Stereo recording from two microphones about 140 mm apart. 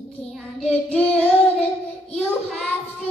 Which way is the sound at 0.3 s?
Centre (ahead or behind).